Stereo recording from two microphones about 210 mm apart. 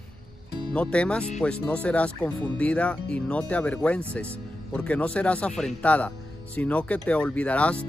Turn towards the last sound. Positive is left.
turn(degrees=5)  # may be behind; listen again after turning